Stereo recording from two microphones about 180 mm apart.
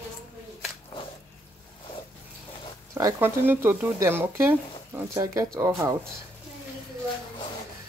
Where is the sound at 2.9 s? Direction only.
15° right (ahead or behind).